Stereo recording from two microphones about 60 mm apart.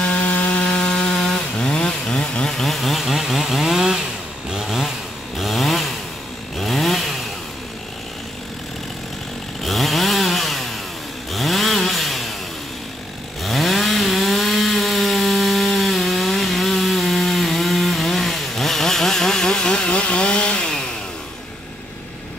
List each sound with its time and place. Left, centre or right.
0.0 s chainsaw: centre
0.7 s wood: centre
5.4 s chainsaw: centre
9.6 s chainsaw: centre
13.4 s chainsaw: centre